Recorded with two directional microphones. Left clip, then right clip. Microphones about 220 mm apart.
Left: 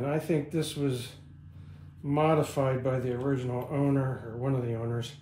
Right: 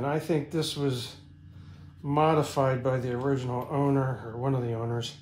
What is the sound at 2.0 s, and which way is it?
Speech, 20° right (ahead or behind).